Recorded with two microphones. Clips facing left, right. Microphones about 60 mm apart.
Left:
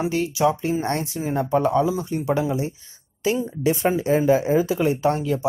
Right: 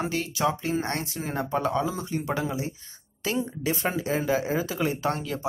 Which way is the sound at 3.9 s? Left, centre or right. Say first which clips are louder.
Left 7 dB; left.